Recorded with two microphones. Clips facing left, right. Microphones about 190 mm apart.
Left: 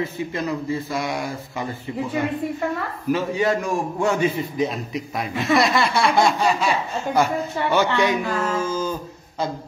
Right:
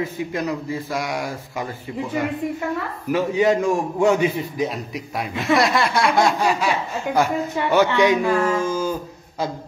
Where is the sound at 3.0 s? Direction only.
15° right (ahead or behind).